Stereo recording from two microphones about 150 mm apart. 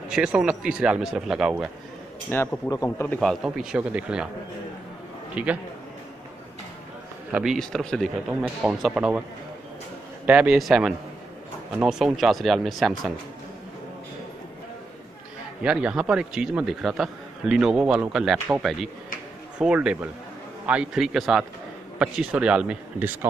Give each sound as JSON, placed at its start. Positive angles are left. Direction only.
{"t": 0.1, "sound": "a man's voice", "side_deg": -5}
{"t": 2.3, "sound": "a man's voice", "side_deg": 10}
{"t": 3.1, "sound": "a man's voice", "side_deg": 5}
{"t": 3.4, "sound": "a man's voice", "side_deg": -5}
{"t": 5.3, "sound": "a man's voice", "side_deg": -10}
{"t": 7.3, "sound": "a man's voice", "side_deg": 0}
{"t": 10.2, "sound": "a man's voice", "side_deg": -10}
{"t": 15.6, "sound": "a man's voice", "side_deg": -5}